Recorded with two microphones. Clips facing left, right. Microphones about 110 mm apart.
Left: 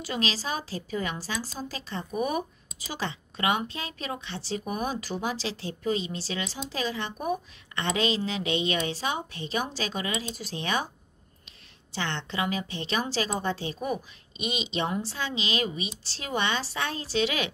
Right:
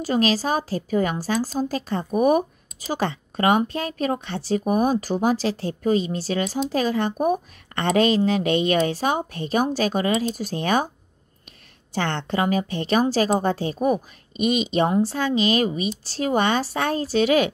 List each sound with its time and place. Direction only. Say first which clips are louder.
0.0 s a woman's voice: right 10 dB; 45° right (ahead or behind)
11.9 s a woman's voice: right 8 dB; 50° right (ahead or behind)